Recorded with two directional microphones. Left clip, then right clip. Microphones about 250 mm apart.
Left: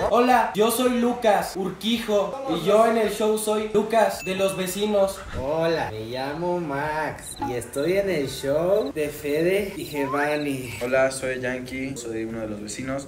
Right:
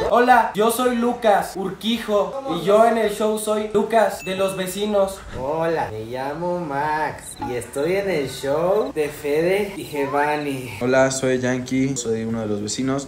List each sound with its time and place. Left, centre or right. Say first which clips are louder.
0.1 s speech: right 6 dB; centre
11.0 s speech: right 4 dB; right
12.7 s speech: right 5 dB; centre